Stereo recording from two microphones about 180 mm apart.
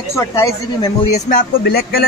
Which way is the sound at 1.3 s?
60° left (ahead or behind).